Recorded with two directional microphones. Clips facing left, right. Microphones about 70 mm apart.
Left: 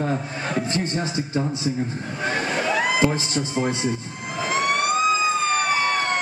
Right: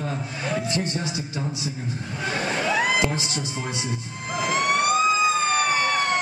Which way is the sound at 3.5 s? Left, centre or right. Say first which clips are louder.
Left 7 dB; left.